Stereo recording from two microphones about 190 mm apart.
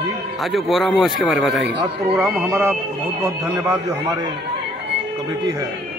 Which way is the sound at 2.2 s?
15° right (ahead or behind).